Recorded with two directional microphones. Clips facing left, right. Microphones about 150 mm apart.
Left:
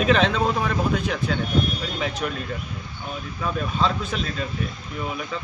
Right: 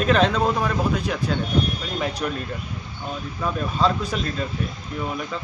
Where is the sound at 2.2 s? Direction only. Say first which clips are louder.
Right 1 dB; centre (ahead or behind).